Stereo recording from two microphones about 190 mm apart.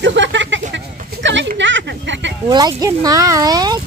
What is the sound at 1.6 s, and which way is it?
Speech, 70° right (ahead or behind).